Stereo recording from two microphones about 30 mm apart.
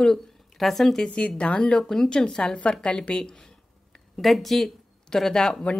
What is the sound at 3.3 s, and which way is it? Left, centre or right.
Speech, centre.